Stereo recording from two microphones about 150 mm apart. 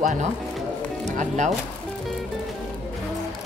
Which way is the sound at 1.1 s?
55° right (ahead or behind).